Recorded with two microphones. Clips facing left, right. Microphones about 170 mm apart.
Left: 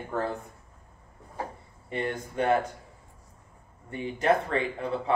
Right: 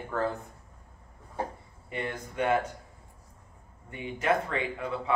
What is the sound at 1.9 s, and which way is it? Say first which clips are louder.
Speech: left 4 dB; 35° left (ahead or behind).